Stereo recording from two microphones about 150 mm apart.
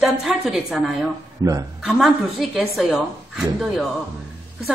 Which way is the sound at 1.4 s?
25° right (ahead or behind).